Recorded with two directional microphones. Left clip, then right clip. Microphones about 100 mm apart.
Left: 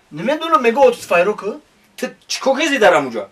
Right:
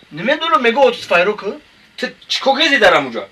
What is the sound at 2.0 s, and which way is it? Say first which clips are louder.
Speech: right 3 dB; 10° left (ahead or behind).